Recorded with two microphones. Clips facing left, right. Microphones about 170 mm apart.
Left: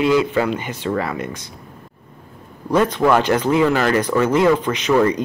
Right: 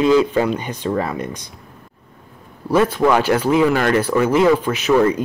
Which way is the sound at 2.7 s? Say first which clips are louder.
Right 1 dB; 10° right (ahead or behind).